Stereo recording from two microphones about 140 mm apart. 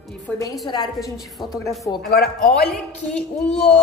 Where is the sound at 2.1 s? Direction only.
90° left.